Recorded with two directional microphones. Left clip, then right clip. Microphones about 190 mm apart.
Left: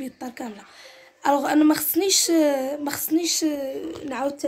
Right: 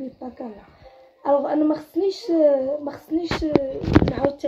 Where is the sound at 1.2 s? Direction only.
25° left (ahead or behind).